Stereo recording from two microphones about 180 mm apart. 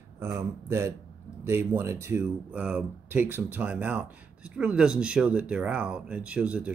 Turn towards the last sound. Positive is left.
turn(degrees=-5)  # may be behind; listen again after turning